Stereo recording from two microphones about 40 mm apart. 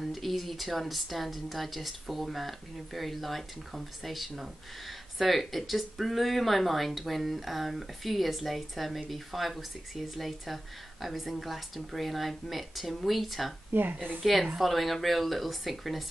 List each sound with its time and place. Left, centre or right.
0.0 s a woman's voice: centre
13.7 s a woman's voice: right
14.2 s a woman's voice: centre